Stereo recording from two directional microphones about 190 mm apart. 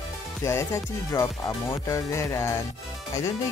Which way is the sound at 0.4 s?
15° left (ahead or behind).